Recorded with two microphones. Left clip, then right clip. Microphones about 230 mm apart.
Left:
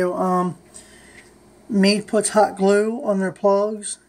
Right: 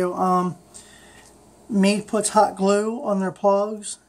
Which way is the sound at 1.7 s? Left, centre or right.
Centre.